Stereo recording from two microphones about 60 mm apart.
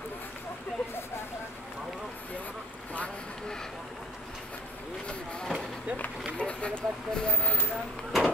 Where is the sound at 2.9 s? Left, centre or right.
Centre.